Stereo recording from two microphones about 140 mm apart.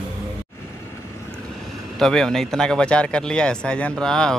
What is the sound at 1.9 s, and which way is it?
Speech, 5° left (ahead or behind).